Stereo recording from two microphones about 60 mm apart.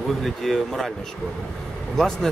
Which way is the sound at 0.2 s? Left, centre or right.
Centre.